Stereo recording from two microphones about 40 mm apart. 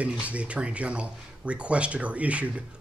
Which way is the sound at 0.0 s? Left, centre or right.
Right.